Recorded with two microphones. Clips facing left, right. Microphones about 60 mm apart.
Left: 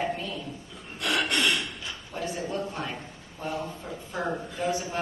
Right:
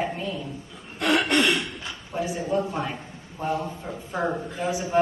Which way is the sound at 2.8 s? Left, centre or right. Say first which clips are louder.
Right 3 dB; centre.